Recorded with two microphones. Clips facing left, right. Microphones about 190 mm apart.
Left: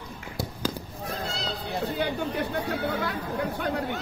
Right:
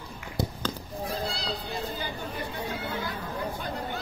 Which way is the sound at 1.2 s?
35° right (ahead or behind).